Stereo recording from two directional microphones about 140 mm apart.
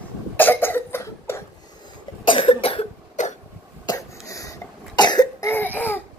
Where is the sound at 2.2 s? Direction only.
40° left (ahead or behind).